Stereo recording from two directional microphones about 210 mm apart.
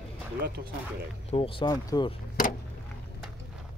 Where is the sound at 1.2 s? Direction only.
25° left (ahead or behind).